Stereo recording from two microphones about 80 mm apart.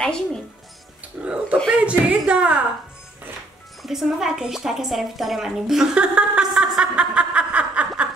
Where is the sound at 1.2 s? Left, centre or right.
Centre.